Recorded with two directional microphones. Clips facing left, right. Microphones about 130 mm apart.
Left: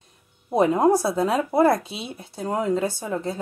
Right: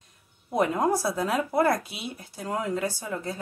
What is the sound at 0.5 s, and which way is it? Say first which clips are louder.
Speech: left 6 dB; 25° left (ahead or behind).